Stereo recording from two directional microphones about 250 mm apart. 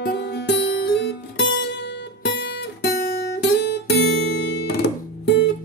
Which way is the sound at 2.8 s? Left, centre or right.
Left.